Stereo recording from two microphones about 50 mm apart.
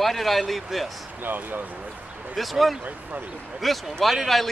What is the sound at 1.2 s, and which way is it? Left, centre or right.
Speech, right.